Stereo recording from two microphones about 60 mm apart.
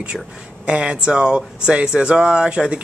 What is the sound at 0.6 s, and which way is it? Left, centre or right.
Speech, centre.